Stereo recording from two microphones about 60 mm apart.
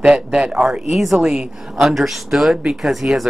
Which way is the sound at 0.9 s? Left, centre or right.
Centre.